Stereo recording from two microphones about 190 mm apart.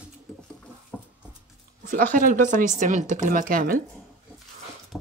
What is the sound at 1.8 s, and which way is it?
Speech, 45° right (ahead or behind).